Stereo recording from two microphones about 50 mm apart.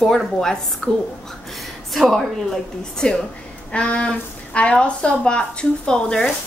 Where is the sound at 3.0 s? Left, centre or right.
Left.